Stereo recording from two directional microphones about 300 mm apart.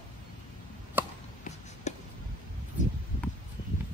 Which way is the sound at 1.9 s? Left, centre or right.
Left.